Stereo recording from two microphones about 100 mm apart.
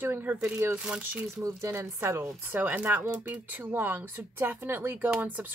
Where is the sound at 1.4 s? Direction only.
30° right (ahead or behind).